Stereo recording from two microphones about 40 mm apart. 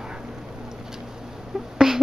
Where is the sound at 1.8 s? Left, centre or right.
Centre.